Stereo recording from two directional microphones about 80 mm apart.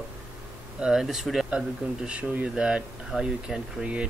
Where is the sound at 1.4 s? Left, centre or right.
Centre.